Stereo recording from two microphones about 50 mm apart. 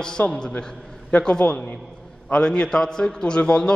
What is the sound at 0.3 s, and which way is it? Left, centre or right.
A man's voice, left.